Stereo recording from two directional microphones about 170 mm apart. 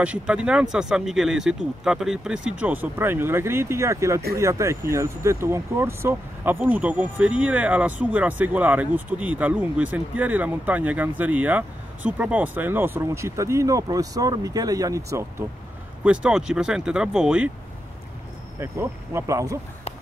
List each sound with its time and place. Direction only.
0.0 s speech: 5° right (ahead or behind)
16.0 s speech: 5° right (ahead or behind)
18.6 s speech: 15° right (ahead or behind)